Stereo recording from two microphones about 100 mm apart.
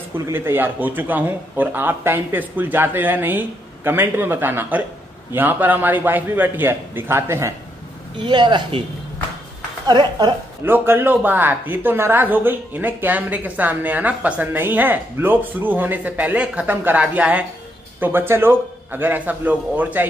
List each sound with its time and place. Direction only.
0.3 s a man's voice: 20° right (ahead or behind)
8.2 s speech: 50° right (ahead or behind)
9.8 s speech: 45° right (ahead or behind)
10.6 s a man's voice: 20° right (ahead or behind)